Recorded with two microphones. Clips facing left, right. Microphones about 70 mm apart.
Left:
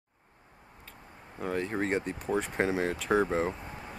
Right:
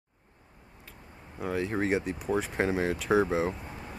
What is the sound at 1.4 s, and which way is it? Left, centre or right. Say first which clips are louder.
Speech: right 1 dB; centre.